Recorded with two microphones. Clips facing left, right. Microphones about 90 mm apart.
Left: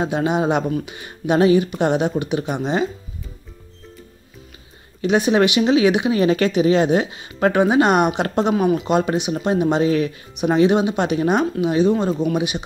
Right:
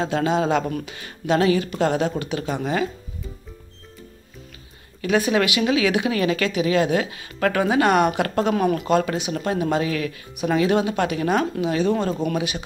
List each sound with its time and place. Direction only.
0.0 s speech: 20° left (ahead or behind)
5.0 s speech: 25° left (ahead or behind)
8.5 s speech: 5° left (ahead or behind)
8.8 s speech: 20° left (ahead or behind)